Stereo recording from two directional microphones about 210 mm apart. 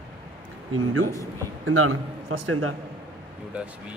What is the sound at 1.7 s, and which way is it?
A man's voice, 80° right.